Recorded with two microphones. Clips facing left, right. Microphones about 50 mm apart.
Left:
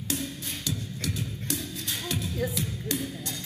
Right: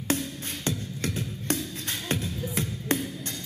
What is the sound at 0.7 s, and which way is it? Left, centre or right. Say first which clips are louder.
Music: right 3 dB; right.